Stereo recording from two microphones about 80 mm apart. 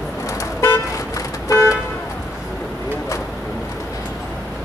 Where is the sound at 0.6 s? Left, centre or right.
Left.